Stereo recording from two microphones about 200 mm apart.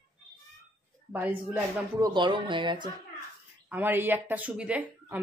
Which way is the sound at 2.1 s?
25° right (ahead or behind).